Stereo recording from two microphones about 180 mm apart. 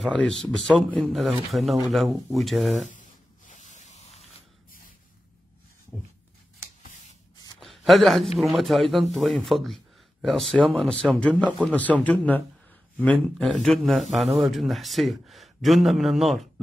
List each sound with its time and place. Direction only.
0.0 s a man's voice: centre (ahead or behind)
2.9 s a sound: 45° left (ahead or behind)
7.6 s a man's voice: centre (ahead or behind)